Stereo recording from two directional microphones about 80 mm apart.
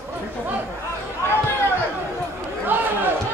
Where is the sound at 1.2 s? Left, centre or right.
Left.